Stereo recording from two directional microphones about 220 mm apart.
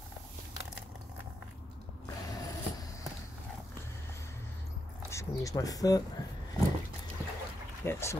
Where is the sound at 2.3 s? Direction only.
15° left (ahead or behind).